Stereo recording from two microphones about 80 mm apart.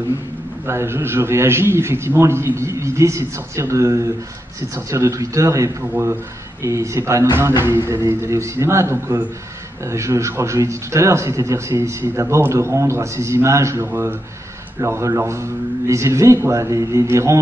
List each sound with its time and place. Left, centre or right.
0.7 s speech: right